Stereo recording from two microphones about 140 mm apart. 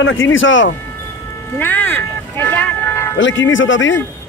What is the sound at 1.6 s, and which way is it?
Vehicle, 15° left (ahead or behind).